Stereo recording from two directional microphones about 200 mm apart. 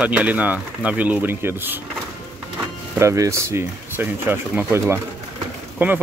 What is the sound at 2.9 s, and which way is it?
Speech, 15° right (ahead or behind).